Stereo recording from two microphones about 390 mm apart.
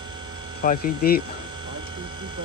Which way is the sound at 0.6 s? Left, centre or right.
Left.